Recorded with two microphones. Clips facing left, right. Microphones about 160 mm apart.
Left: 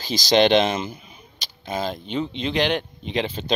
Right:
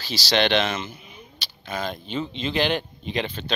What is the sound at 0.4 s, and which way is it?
Speech, 35° left (ahead or behind).